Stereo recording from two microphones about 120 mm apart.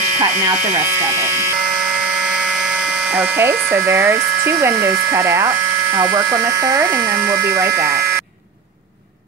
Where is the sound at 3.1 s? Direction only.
15° right (ahead or behind).